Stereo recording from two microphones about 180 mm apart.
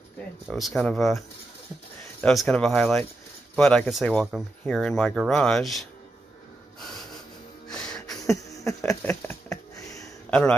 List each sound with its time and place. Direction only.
0.5 s speech: centre (ahead or behind)
2.2 s speech: 5° left (ahead or behind)
7.7 s music: 5° left (ahead or behind)
8.3 s a sound: 20° left (ahead or behind)